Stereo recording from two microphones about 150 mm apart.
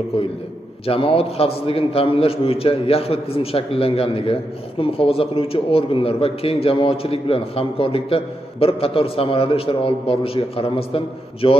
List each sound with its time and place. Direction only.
0.8 s a man's voice: 40° left (ahead or behind)